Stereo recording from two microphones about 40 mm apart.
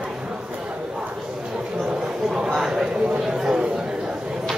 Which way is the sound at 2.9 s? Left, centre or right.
Right.